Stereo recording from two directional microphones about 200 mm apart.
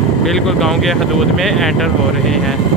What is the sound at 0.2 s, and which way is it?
Speech, centre (ahead or behind).